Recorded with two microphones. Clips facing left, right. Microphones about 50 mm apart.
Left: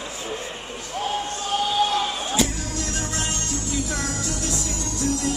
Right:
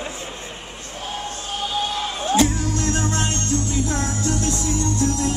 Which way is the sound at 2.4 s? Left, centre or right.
Right.